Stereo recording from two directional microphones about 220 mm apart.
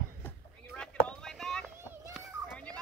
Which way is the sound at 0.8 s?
5° left (ahead or behind).